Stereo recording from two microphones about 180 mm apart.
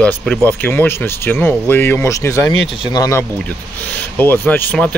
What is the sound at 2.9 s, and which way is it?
Speech, 15° left (ahead or behind).